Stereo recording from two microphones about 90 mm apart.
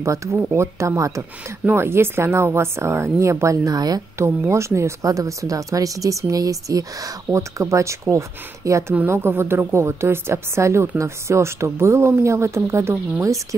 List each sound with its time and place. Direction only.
0.0 s speech: 35° right (ahead or behind)
4.2 s speech: 30° right (ahead or behind)